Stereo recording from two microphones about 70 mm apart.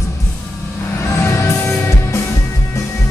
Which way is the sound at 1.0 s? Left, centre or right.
Left.